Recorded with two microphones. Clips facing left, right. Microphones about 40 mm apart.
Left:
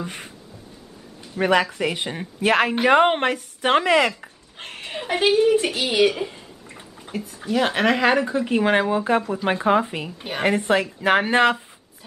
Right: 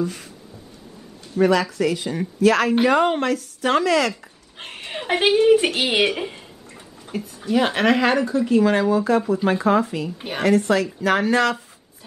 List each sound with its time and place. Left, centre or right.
0.0 s a sound: left
1.4 s speech: left
4.6 s chuckle: centre
5.1 s a woman's voice: centre
5.6 s a woman's voice: right
7.1 s speech: centre
8.3 s speech: left